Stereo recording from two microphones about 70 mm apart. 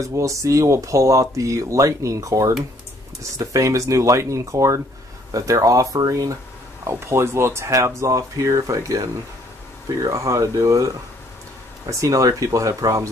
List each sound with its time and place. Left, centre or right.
0.0 s speech: right
6.8 s speech: right
11.9 s speech: right